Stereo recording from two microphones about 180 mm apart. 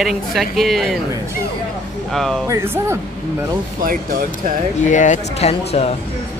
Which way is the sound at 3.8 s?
50° right (ahead or behind).